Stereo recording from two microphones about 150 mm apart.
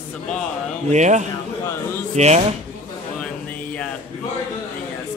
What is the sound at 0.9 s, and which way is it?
Speech, 50° right (ahead or behind).